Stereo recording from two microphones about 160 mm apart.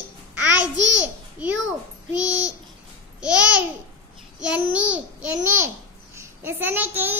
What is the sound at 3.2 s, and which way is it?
Babbling, 5° right (ahead or behind).